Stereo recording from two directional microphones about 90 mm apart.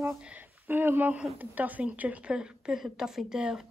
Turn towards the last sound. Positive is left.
turn(degrees=-10)  # may be behind; listen again after turning